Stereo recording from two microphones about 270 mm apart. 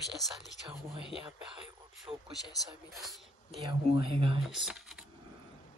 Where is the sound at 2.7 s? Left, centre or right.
Centre.